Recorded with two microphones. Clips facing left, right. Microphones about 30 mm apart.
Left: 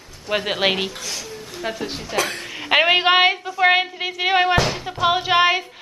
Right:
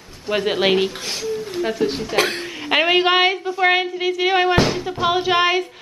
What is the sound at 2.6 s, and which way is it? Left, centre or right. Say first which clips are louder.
A woman's voice: left 1 dB; centre.